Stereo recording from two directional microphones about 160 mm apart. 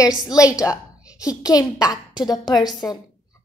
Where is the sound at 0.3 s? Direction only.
25° left (ahead or behind).